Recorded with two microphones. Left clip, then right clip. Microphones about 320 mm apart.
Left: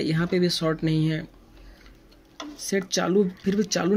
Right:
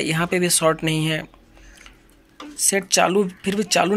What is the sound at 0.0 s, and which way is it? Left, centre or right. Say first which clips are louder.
Speech: right 4 dB; centre.